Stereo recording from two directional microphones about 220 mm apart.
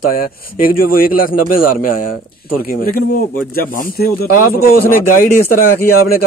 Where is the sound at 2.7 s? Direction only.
40° left (ahead or behind).